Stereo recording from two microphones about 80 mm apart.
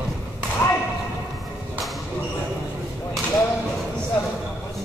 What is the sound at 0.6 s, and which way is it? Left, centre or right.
Thump, left.